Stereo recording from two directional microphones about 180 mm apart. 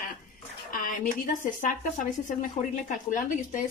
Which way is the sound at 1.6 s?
50° left (ahead or behind).